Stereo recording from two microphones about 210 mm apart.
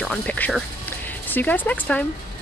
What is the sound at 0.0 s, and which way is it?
Speech, 5° left (ahead or behind).